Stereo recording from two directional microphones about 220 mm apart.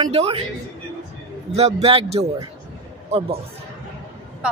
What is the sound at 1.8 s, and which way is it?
A man's voice, 25° right (ahead or behind).